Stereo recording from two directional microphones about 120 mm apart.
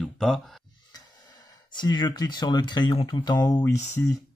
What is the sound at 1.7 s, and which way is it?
Speech, 40° left (ahead or behind).